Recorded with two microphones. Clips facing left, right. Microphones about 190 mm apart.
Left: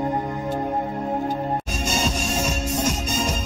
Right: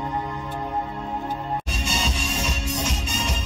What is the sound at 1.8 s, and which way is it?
Music, 45° left (ahead or behind).